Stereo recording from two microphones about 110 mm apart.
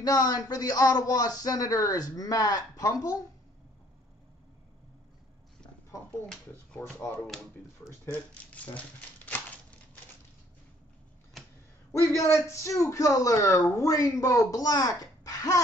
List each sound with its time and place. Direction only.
0.0 s speech: 35° left (ahead or behind)
6.8 s speech: 20° left (ahead or behind)
8.0 s crumpling: 15° left (ahead or behind)
12.2 s speech: 25° left (ahead or behind)